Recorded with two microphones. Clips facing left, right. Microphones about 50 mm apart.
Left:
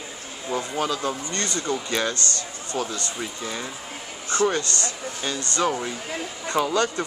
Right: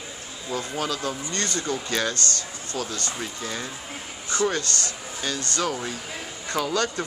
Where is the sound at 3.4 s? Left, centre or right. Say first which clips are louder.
Left 1 dB; centre.